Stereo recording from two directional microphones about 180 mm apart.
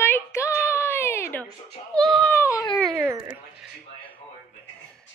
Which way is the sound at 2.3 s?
20° left (ahead or behind).